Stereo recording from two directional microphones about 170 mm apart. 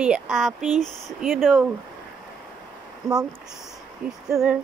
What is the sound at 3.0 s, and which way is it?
Speech, 15° right (ahead or behind).